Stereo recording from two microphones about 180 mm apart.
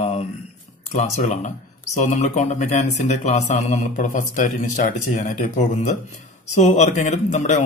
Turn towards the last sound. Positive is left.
turn(degrees=40)  # may be behind; listen again after turning